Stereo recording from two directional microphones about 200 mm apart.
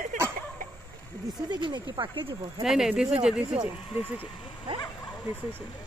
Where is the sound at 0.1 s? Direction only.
40° right (ahead or behind).